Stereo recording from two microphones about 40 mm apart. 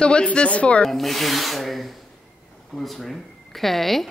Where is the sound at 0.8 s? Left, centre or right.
Centre.